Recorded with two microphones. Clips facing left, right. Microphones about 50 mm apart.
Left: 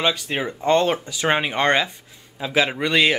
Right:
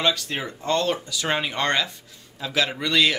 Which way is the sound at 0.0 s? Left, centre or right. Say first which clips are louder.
Left 2 dB; centre.